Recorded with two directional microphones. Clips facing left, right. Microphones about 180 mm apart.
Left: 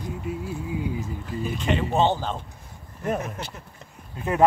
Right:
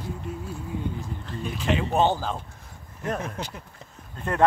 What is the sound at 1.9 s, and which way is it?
Speech, 10° right (ahead or behind).